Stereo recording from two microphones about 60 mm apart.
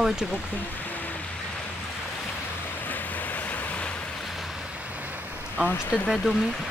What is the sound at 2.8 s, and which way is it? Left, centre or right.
Waves, left.